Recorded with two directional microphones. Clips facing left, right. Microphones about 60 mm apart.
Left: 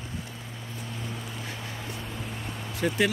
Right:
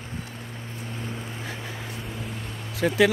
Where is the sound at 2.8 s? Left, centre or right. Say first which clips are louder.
Right 3 dB; right.